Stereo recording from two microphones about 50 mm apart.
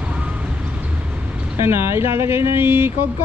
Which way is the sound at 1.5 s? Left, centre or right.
Right.